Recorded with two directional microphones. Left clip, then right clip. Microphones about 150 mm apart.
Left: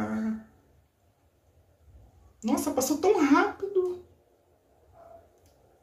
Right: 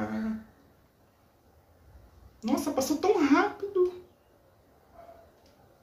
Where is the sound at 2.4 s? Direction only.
15° left (ahead or behind).